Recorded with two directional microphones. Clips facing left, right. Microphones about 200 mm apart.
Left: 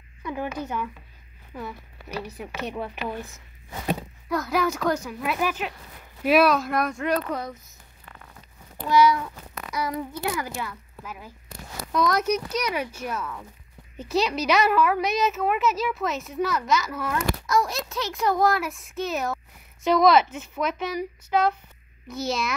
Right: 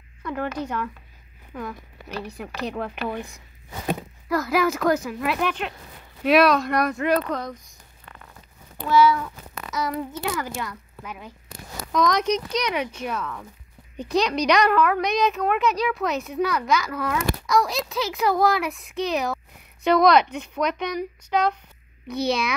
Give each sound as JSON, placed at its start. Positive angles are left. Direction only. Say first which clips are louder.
{"t": 0.2, "sound": "a woman's voice", "louder": "right 2 dB", "side_deg": 5}
{"t": 4.3, "sound": "a woman's voice", "louder": "right 3 dB", "side_deg": 0}
{"t": 8.8, "sound": "a woman's voice", "louder": "right 1 dB", "side_deg": 15}